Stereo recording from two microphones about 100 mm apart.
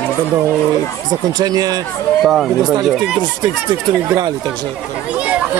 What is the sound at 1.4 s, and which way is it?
Speech, 40° right (ahead or behind).